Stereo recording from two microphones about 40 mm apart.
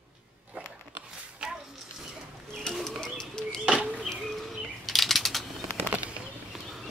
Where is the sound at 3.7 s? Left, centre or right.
Right.